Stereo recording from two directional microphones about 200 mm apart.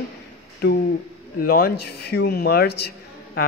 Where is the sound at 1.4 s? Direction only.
50° left (ahead or behind).